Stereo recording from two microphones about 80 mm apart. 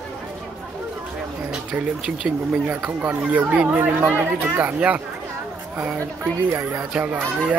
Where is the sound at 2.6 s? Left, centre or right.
Right.